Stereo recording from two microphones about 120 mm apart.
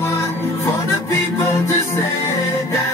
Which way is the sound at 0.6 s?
25° left (ahead or behind).